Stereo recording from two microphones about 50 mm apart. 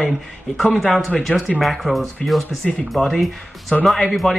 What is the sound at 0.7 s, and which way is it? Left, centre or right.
Speech, centre.